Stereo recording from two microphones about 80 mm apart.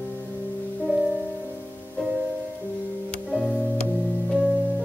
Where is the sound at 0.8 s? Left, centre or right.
Centre.